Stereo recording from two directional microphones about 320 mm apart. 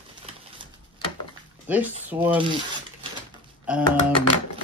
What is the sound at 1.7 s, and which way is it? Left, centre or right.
Speech, centre.